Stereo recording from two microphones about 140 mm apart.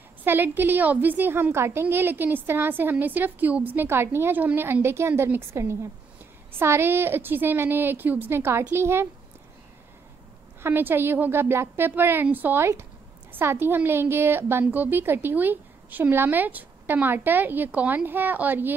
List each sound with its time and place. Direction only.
0.2 s a woman's voice: 15° right (ahead or behind)
10.6 s a woman's voice: 15° right (ahead or behind)